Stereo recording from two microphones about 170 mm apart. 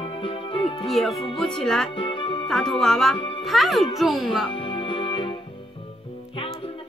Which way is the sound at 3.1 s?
30° left (ahead or behind).